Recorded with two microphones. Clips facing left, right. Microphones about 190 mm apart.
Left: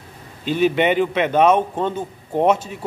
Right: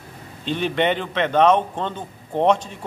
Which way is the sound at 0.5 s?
5° left (ahead or behind).